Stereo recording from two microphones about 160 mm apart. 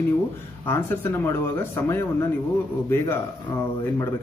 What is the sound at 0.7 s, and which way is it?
Speech, 15° left (ahead or behind).